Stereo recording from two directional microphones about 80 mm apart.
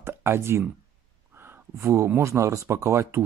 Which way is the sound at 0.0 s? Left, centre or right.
Right.